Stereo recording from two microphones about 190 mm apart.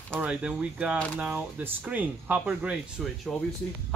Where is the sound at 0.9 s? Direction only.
5° left (ahead or behind).